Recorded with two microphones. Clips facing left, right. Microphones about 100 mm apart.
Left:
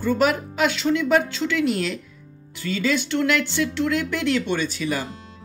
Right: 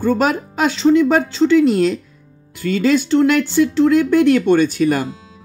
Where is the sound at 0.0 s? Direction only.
45° right (ahead or behind).